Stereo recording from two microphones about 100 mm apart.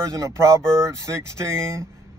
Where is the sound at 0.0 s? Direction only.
30° right (ahead or behind).